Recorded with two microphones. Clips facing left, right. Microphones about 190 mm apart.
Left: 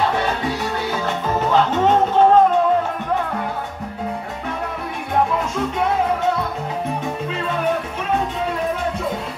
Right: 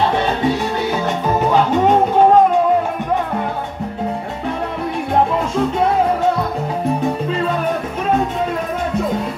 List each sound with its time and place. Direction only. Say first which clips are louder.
0.1 s music: right 5 dB; 25° right (ahead or behind)